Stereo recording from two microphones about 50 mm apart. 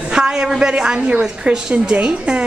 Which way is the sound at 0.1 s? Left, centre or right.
Centre.